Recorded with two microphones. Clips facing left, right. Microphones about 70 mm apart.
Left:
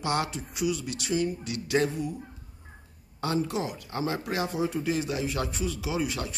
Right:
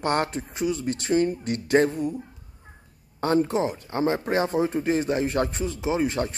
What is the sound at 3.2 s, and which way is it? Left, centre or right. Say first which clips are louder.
Speech: right 6 dB; right.